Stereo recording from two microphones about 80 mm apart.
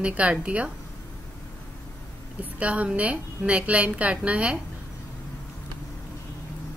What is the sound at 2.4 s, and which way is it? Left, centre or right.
A woman's voice, centre.